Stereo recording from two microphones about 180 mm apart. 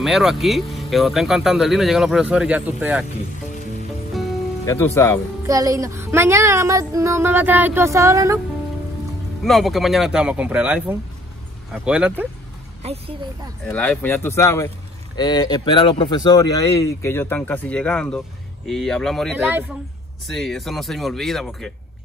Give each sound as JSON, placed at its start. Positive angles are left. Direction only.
{"t": 0.0, "sound": "speech", "side_deg": 0}
{"t": 4.1, "sound": "music", "side_deg": 0}
{"t": 4.6, "sound": "speech", "side_deg": 15}
{"t": 5.5, "sound": "speech", "side_deg": -20}
{"t": 9.4, "sound": "speech", "side_deg": 0}
{"t": 12.8, "sound": "a woman's voice", "side_deg": -35}
{"t": 13.7, "sound": "speech", "side_deg": 10}
{"t": 19.3, "sound": "speech", "side_deg": -10}
{"t": 20.2, "sound": "speech", "side_deg": 0}